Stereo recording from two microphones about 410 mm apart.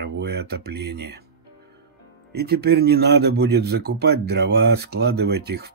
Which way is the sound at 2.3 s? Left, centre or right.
Right.